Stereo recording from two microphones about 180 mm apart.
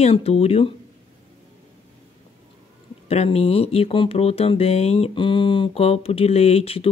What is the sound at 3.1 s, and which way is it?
Speech, 35° left (ahead or behind).